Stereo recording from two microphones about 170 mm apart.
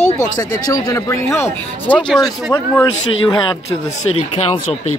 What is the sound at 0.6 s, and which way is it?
Speech, 20° left (ahead or behind).